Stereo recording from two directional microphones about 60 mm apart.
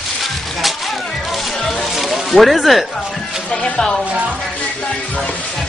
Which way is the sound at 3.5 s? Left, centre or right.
Centre.